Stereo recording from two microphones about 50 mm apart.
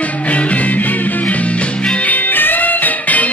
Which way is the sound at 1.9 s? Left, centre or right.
Left.